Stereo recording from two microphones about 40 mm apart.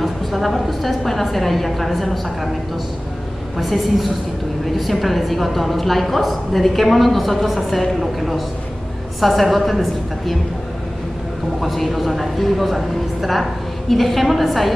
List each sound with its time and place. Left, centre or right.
0.0 s speech: centre
3.5 s a woman's voice: centre
11.6 s speech: centre